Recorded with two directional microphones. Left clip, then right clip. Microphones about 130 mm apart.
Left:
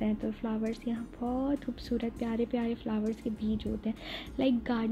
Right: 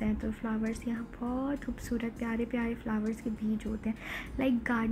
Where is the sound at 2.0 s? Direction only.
30° left (ahead or behind).